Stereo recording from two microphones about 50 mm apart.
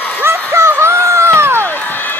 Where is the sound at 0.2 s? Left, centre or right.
Right.